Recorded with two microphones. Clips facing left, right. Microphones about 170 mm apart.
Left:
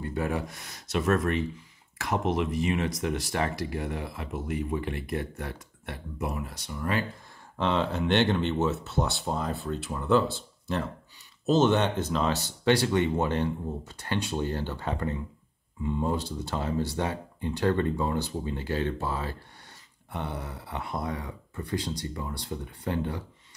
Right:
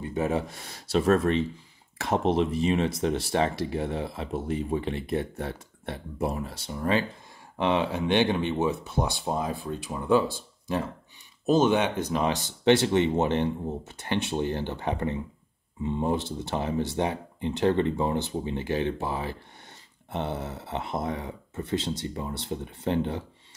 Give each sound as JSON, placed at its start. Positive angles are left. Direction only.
{"t": 0.0, "sound": "speech", "side_deg": -20}
{"t": 7.5, "sound": "speech", "side_deg": -15}